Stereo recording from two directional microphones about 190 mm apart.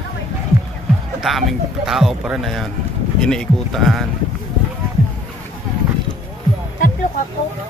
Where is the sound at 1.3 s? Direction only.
Centre (ahead or behind).